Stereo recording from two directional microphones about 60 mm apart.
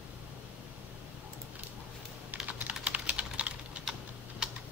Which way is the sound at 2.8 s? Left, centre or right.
Right.